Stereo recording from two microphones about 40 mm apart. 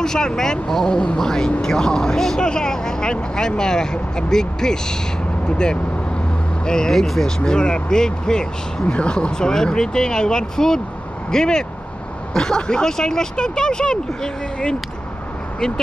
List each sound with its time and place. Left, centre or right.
0.0 s speech: centre
6.6 s speech: centre